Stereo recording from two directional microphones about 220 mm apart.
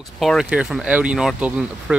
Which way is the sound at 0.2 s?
Centre (ahead or behind).